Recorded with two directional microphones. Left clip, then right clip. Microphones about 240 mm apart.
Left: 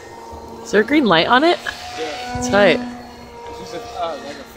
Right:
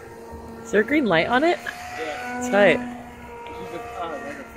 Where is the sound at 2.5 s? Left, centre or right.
Centre.